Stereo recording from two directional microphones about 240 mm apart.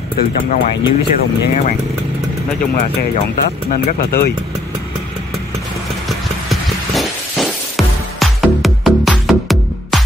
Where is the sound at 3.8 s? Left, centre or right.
Left.